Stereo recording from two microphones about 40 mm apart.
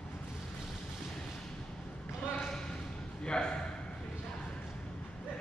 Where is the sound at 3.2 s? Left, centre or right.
Left.